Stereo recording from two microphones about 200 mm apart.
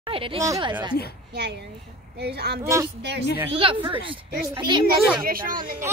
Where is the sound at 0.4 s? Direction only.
20° right (ahead or behind).